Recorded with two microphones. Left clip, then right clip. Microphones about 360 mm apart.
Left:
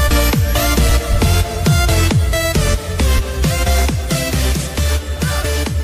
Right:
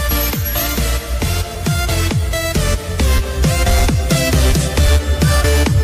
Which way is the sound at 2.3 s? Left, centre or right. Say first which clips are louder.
Left 1 dB; left.